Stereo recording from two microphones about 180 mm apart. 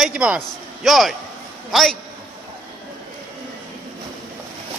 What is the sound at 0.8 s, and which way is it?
A man's voice, centre (ahead or behind).